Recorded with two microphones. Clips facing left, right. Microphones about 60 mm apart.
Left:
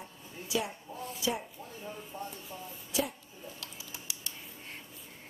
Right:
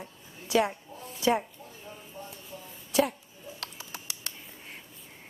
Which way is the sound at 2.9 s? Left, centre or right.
Right.